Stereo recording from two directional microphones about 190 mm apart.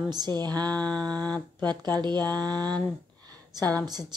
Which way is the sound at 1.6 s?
20° right (ahead or behind).